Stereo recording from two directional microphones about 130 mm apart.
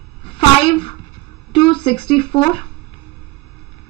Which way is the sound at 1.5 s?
40° left (ahead or behind).